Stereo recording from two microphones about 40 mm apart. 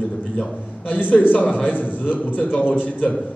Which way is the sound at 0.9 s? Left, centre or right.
Left.